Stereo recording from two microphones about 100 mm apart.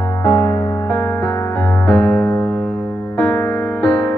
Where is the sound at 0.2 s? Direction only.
25° left (ahead or behind).